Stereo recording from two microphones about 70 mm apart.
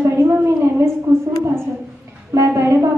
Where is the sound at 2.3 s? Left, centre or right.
Right.